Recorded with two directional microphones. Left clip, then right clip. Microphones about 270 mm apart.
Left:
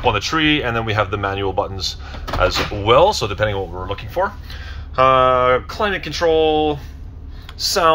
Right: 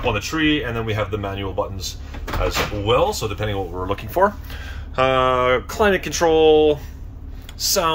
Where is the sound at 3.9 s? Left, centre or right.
Centre.